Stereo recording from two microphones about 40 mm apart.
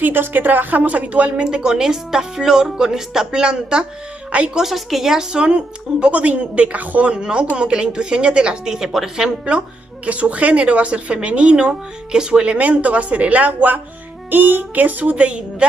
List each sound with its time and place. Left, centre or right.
0.0 s speech: right
1.4 s speech: right
4.6 s a woman's voice: centre; by 6.8 s right
6.8 s speech: right
7.1 s a woman's voice: right
10.0 s speech: right
12.6 s speech: right
14.3 s speech: right